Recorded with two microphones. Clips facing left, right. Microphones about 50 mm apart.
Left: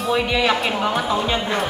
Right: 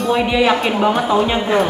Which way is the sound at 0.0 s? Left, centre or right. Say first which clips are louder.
Right 4 dB; centre.